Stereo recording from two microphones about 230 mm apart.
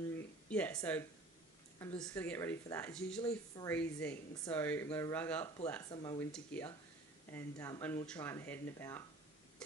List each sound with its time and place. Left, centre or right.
0.5 s speech: centre
2.0 s speech: centre
3.2 s speech: centre
3.7 s speech: centre